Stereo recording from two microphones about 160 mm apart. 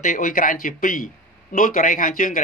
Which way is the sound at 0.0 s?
55° left (ahead or behind).